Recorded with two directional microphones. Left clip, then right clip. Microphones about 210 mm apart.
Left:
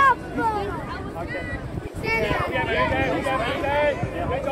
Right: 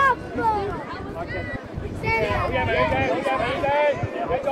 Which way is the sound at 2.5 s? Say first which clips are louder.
Right 1 dB; 55° right (ahead or behind).